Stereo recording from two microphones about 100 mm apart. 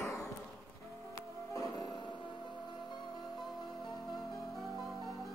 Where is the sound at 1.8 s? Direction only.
50° left (ahead or behind).